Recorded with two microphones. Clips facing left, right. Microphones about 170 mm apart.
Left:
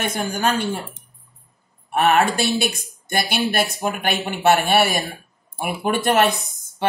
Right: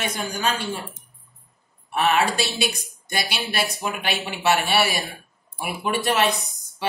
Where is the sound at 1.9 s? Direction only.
50° left (ahead or behind).